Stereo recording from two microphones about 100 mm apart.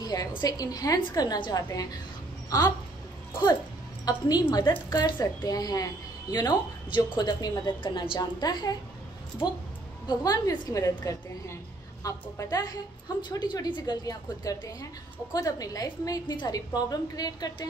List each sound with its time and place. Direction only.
0.0 s a woman's voice: 40° left (ahead or behind)
4.0 s a woman's voice: 40° left (ahead or behind)
7.8 s a woman's voice: 60° left (ahead or behind)
8.4 s a woman's voice: 45° left (ahead or behind)
10.0 s a woman's voice: 40° left (ahead or behind)
12.0 s a woman's voice: 35° left (ahead or behind)
14.0 s a woman's voice: 35° left (ahead or behind)